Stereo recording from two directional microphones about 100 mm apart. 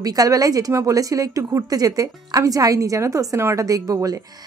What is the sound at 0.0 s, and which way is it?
A woman's voice, 40° right (ahead or behind).